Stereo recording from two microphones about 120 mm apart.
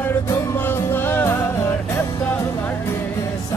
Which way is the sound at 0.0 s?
20° left (ahead or behind).